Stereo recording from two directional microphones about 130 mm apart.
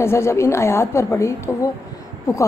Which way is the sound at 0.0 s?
20° left (ahead or behind).